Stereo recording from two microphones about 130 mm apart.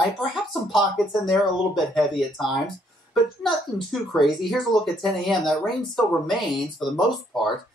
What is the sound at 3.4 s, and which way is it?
Speech, centre (ahead or behind).